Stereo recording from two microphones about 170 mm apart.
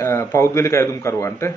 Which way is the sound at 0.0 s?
15° left (ahead or behind).